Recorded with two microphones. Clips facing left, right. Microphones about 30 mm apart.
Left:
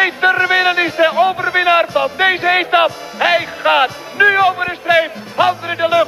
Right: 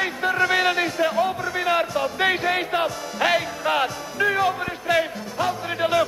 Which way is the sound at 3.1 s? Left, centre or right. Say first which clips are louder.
Left 5 dB; left.